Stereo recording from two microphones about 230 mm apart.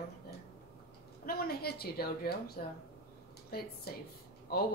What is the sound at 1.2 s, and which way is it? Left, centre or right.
Speech, left.